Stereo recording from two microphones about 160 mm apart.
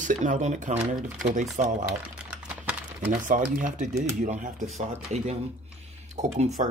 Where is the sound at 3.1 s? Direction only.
60° right (ahead or behind).